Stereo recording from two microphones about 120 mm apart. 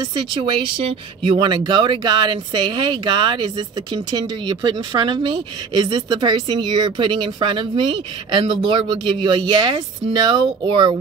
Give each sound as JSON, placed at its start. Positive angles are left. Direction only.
{"t": 0.0, "sound": "speech", "side_deg": -40}